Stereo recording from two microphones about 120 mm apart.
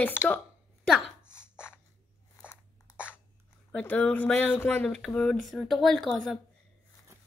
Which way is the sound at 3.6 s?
10° left (ahead or behind).